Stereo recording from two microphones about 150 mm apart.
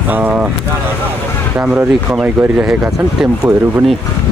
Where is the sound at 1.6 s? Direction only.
5° right (ahead or behind).